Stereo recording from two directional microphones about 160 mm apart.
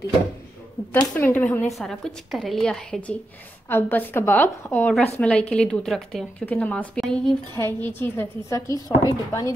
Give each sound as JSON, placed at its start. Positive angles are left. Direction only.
{"t": 1.1, "sound": "a woman's voice", "side_deg": 10}
{"t": 1.7, "sound": "a woman's voice", "side_deg": 0}
{"t": 7.5, "sound": "speech", "side_deg": 15}